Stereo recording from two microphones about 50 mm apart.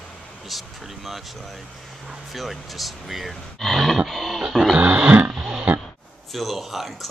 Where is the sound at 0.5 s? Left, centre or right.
Centre.